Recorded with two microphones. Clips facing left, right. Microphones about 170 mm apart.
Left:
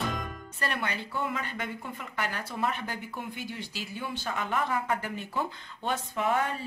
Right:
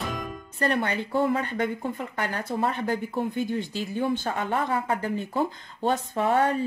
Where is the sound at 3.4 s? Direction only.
50° right (ahead or behind).